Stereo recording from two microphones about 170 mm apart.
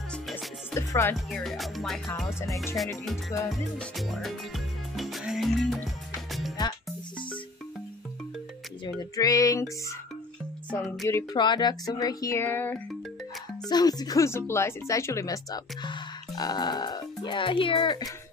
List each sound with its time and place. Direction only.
0.1 s music: centre (ahead or behind)
0.7 s music: 15° left (ahead or behind)
1.1 s speech: centre (ahead or behind)
2.4 s speech: 20° left (ahead or behind)
3.7 s speech: centre (ahead or behind)
4.9 s music: centre (ahead or behind)
8.8 s speech: 20° left (ahead or behind)
10.7 s music: 10° left (ahead or behind)
11.3 s speech: 25° left (ahead or behind)
13.7 s speech: 25° left (ahead or behind)